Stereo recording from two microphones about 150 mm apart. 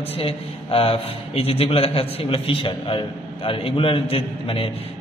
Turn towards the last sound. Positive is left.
turn(degrees=35)  # may be behind; listen again after turning